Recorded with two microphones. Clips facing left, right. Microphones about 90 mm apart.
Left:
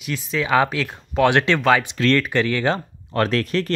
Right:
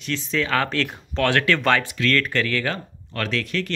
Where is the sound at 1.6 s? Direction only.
10° left (ahead or behind).